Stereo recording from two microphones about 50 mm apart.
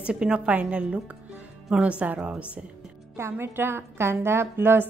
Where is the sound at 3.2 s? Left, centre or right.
Right.